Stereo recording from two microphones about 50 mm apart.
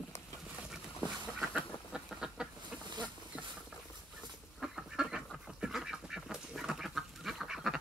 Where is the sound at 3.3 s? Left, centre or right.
Centre.